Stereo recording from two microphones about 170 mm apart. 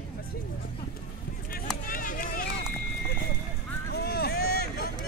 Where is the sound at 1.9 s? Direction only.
55° left (ahead or behind).